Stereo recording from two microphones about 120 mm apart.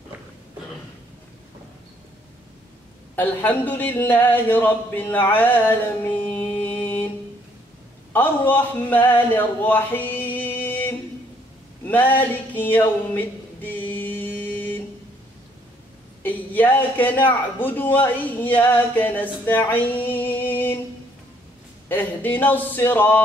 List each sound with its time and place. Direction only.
3.2 s speech: 15° left (ahead or behind)
8.1 s speech: 15° left (ahead or behind)
9.3 s a sound: 15° left (ahead or behind)
16.2 s a man's voice: 15° left (ahead or behind)
21.8 s speech: 15° left (ahead or behind)